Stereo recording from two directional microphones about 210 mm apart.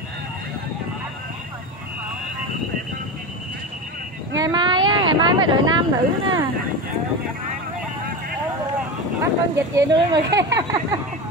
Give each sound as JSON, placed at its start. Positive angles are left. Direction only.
{"t": 4.4, "sound": "speech", "side_deg": -20}
{"t": 9.2, "sound": "speech", "side_deg": -15}